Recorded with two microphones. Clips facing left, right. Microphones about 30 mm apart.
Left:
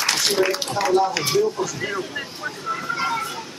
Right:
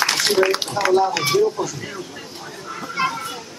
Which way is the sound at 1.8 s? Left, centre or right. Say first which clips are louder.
Left 5 dB; left.